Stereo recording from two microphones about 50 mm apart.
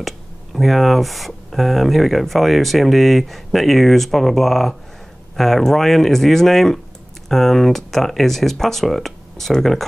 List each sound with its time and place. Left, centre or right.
0.0 s speech: centre